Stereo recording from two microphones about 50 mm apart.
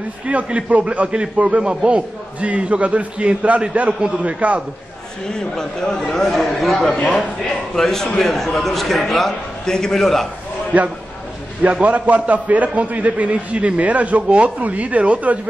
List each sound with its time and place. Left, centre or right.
0.3 s a man's voice: right
5.3 s a man's voice: centre
6.9 s a man's voice: centre
7.7 s a man's voice: centre
10.7 s a man's voice: right